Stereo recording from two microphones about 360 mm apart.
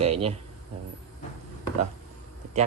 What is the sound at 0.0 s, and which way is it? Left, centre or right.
Speech, centre.